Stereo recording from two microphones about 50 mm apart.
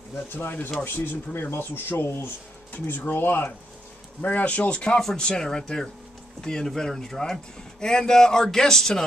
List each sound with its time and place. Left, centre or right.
0.3 s speech: left
4.2 s speech: left; by 9.0 s centre